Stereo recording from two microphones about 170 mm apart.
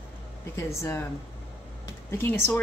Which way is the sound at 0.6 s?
15° left (ahead or behind).